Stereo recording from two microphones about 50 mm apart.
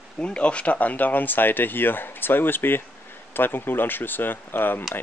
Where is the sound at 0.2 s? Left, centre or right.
Left.